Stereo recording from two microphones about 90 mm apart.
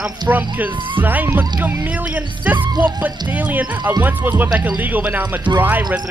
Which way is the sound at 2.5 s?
55° right (ahead or behind).